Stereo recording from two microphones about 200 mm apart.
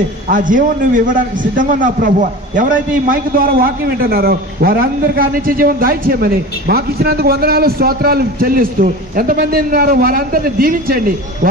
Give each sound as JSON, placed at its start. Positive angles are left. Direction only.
{"t": 0.3, "sound": "a man's voice", "side_deg": -40}